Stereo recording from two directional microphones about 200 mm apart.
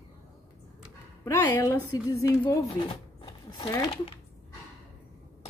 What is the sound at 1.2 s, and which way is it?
Speech, 15° left (ahead or behind).